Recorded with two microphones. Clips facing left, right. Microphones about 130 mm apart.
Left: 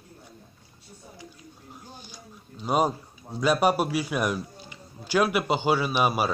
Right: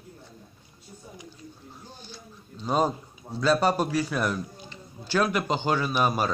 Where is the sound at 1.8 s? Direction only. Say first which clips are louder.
Right 2 dB; 15° left (ahead or behind).